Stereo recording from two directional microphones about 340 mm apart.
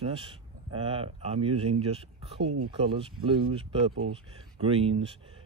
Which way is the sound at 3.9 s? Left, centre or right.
Right.